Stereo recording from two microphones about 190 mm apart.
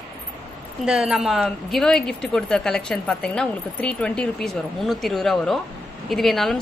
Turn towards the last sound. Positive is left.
turn(degrees=0)  # may be behind; listen again after turning